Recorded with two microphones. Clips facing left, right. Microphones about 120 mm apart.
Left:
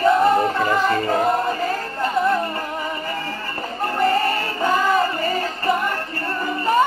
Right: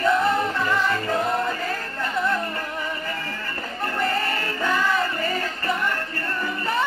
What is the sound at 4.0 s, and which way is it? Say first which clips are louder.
Music: left 7 dB; 35° left (ahead or behind).